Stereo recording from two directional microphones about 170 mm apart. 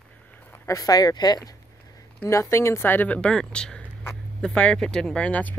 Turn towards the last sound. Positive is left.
turn(degrees=10)  # may be behind; listen again after turning